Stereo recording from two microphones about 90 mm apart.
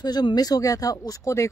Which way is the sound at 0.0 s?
50° left (ahead or behind).